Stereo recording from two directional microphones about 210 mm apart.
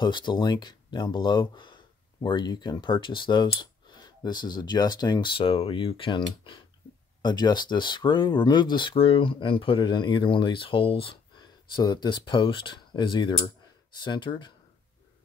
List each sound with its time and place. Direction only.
0.0 s speech: 20° left (ahead or behind)